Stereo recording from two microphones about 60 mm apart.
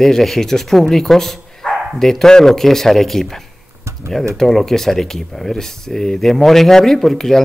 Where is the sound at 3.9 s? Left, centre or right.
Right.